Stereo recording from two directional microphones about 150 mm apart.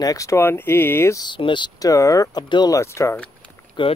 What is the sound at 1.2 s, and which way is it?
Speech, 30° left (ahead or behind).